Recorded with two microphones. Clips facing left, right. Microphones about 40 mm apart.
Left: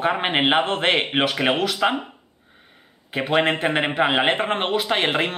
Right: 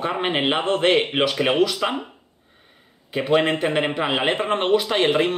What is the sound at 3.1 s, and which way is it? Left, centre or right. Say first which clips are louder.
A man's voice: right 1 dB; left.